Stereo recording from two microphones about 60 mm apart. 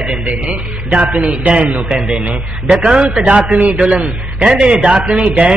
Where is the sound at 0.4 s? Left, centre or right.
Centre.